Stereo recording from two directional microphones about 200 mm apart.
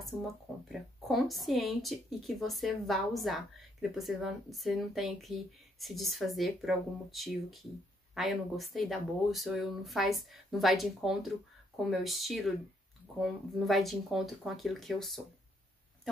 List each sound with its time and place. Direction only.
0.7 s speech: centre (ahead or behind)